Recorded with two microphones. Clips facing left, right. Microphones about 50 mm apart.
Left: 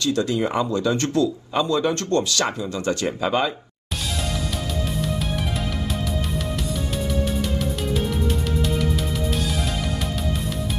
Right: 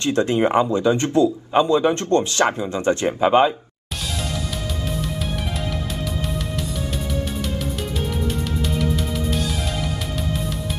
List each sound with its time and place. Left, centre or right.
0.0 s speech: right